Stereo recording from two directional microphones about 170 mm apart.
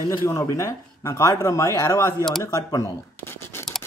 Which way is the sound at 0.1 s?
15° left (ahead or behind).